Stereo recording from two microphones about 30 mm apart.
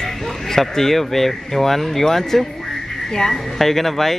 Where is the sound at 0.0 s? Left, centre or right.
Centre.